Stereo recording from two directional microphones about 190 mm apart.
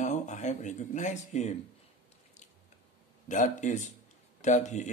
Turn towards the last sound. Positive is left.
turn(degrees=40)  # may be behind; listen again after turning